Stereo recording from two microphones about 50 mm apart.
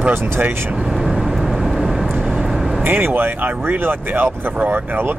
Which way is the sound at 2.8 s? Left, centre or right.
Right.